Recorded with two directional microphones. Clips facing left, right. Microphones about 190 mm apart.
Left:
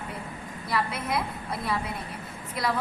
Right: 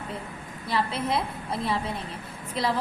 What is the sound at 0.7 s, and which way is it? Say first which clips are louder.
A woman's voice: right 2 dB; 30° right (ahead or behind).